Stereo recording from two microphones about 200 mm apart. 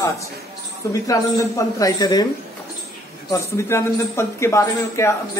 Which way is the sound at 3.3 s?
15° left (ahead or behind).